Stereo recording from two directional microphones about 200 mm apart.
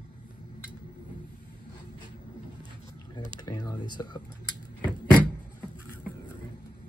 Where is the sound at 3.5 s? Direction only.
20° left (ahead or behind).